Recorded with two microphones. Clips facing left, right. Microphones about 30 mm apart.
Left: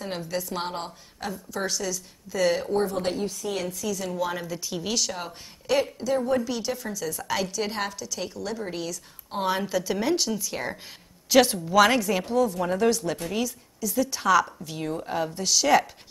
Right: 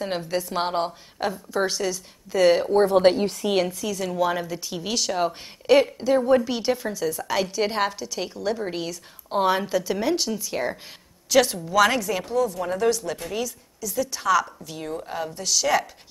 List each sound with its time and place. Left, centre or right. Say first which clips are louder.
0.0 s a woman's voice: right 4 dB; centre
2.8 s a woman's voice: right 9 dB; right
3.6 s a woman's voice: right 2 dB; centre
7.1 s a woman's voice: right 3 dB; centre
7.4 s a woman's voice: right 5 dB; right
11.2 s a woman's voice: even; centre